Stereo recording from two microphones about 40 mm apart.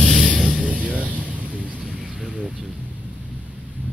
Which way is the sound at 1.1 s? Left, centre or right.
Right.